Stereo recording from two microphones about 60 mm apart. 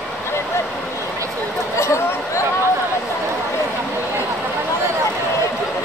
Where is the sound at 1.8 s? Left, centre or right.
Left.